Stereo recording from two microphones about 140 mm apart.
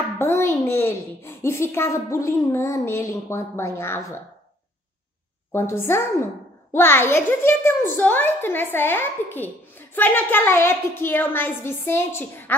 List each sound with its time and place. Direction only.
0.2 s a child's voice: 20° left (ahead or behind)
5.5 s a child's voice: 15° left (ahead or behind)